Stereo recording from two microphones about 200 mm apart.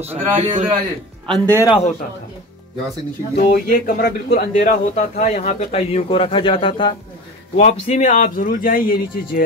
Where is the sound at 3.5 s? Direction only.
45° left (ahead or behind).